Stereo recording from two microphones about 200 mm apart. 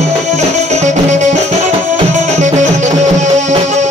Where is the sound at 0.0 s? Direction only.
35° right (ahead or behind).